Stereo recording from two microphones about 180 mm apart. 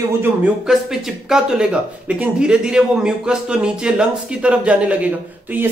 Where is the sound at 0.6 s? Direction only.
5° right (ahead or behind).